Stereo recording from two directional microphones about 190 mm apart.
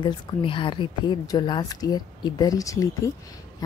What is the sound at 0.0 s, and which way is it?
A woman's voice, 25° left (ahead or behind).